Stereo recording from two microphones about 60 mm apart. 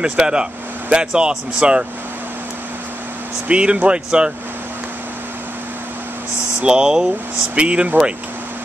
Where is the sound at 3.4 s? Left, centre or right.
Centre.